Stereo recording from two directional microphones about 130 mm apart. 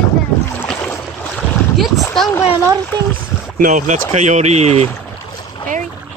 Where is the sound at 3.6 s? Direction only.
70° right (ahead or behind); by 4.9 s 55° right (ahead or behind).